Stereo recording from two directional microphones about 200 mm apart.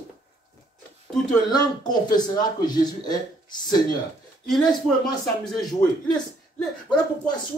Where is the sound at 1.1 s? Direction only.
Centre (ahead or behind).